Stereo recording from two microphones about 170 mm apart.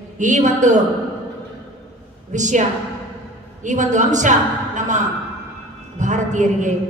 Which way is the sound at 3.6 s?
45° right (ahead or behind).